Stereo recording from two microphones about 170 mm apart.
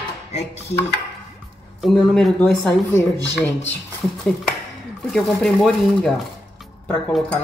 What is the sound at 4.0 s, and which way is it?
Speech, centre (ahead or behind).